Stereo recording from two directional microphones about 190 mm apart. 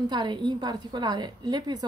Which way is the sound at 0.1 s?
25° right (ahead or behind).